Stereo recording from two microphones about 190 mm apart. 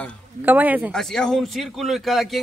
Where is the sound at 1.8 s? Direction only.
Centre (ahead or behind).